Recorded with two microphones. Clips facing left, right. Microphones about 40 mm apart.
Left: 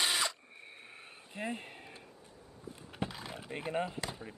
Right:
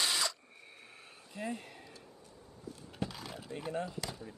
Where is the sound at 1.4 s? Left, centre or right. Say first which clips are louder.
Left 1 dB; left.